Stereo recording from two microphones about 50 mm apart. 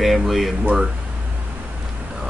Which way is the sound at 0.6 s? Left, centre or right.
Right.